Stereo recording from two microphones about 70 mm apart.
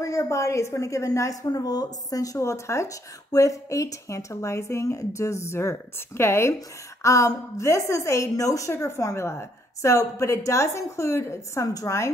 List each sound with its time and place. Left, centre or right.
0.0 s a woman's voice: left
7.0 s a woman's voice: left
11.6 s a woman's voice: left